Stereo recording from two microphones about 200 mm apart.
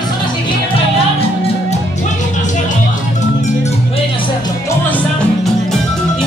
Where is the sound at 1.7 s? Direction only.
35° left (ahead or behind).